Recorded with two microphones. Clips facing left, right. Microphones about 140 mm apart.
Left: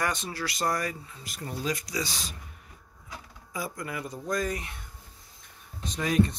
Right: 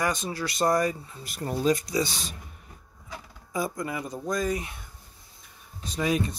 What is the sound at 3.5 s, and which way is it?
Speech, 25° right (ahead or behind).